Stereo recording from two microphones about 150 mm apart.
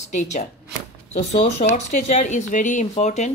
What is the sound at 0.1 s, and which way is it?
Speech, 50° left (ahead or behind).